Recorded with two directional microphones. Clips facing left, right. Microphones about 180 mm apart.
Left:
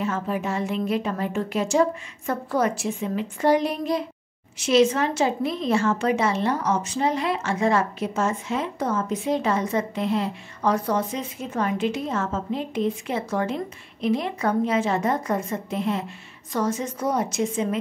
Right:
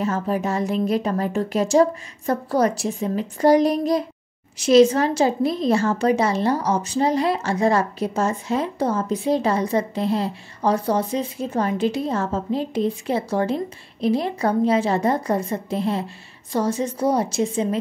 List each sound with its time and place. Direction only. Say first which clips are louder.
0.0 s a woman's voice: right 3 dB; 40° right (ahead or behind)